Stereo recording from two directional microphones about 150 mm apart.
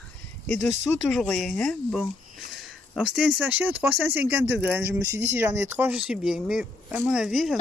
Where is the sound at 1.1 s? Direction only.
Centre (ahead or behind).